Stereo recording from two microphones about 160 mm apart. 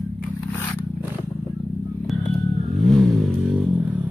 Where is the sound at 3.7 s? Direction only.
10° right (ahead or behind).